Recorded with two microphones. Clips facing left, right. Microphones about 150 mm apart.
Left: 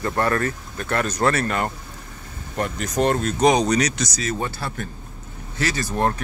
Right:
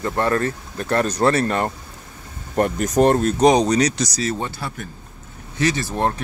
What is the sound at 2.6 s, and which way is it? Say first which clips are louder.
Speech: right 6 dB; 45° right (ahead or behind).